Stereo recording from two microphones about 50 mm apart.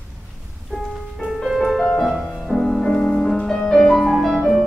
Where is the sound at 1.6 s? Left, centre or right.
Centre.